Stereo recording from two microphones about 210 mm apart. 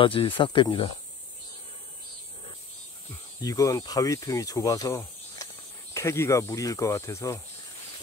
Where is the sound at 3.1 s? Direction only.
15° left (ahead or behind).